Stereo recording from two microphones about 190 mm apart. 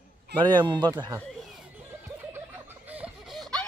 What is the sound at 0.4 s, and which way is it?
Speech, 25° right (ahead or behind).